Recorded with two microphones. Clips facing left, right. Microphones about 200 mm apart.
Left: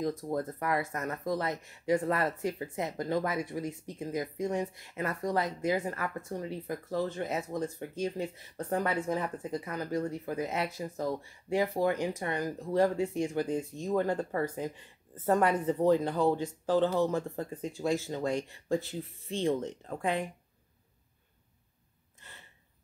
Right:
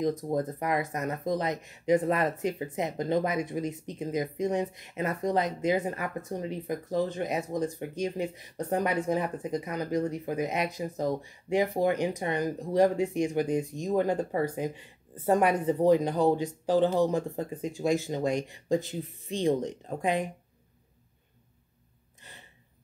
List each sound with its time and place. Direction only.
0.0 s speech: 20° right (ahead or behind)
22.2 s gasp: 15° right (ahead or behind)